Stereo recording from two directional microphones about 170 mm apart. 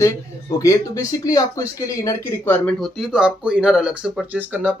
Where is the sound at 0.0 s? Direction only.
20° left (ahead or behind).